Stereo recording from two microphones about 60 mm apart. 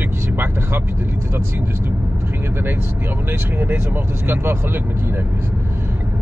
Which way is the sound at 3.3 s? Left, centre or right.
Right.